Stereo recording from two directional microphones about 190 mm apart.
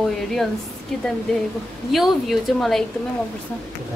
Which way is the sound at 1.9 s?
Centre (ahead or behind).